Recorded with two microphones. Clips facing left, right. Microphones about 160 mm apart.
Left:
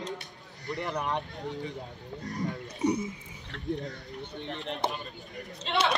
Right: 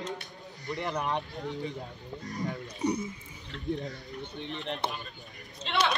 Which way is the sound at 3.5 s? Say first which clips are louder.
Right 1 dB; 60° left (ahead or behind).